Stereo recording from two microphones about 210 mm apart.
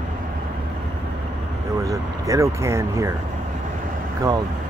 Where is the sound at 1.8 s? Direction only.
15° right (ahead or behind).